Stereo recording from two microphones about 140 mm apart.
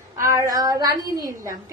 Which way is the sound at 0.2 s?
20° right (ahead or behind).